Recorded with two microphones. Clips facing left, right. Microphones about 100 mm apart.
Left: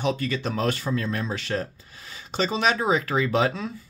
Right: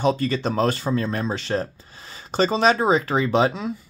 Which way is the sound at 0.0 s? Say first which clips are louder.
Right 5 dB; 35° right (ahead or behind).